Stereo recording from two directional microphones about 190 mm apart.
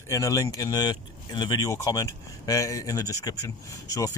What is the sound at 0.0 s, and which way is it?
Speech, 15° left (ahead or behind).